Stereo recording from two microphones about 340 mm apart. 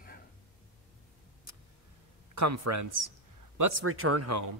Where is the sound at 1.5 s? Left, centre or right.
Right.